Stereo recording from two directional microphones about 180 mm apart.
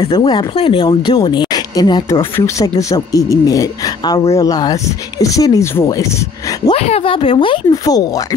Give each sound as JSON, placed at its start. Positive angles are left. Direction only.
{"t": 0.0, "sound": "speech", "side_deg": 30}
{"t": 6.7, "sound": "speech", "side_deg": 35}